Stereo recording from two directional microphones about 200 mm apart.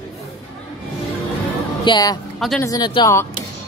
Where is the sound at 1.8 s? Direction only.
20° left (ahead or behind).